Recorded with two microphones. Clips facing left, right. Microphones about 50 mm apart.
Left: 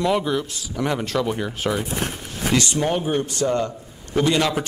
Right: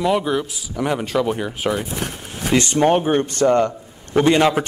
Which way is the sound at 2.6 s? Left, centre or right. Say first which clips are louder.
Right 10 dB; right.